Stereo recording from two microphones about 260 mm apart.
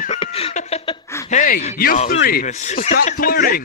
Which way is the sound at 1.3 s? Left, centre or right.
Left.